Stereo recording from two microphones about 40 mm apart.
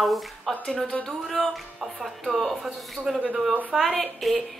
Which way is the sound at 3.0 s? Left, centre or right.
Right.